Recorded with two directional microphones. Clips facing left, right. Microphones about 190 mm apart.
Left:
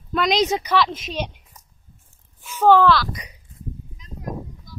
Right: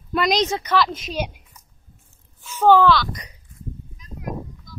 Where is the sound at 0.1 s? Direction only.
Centre (ahead or behind).